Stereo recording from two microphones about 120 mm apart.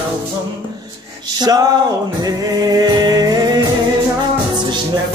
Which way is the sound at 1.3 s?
35° right (ahead or behind).